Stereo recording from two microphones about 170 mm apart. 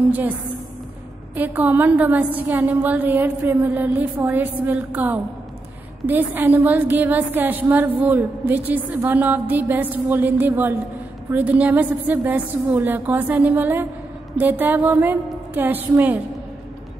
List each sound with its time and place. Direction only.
1.3 s a woman's voice: 10° right (ahead or behind)